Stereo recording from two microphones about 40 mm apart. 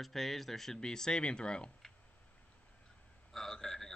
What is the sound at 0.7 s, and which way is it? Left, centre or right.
Speech, centre.